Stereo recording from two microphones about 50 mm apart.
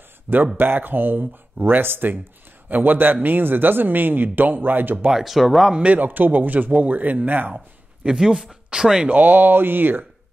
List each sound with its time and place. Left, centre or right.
0.6 s speech: right
5.1 s speech: centre
5.9 s speech: right
7.5 s speech: centre
9.1 s speech: right